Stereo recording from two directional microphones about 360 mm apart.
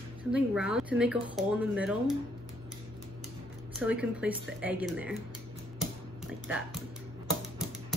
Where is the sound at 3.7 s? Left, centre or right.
Centre.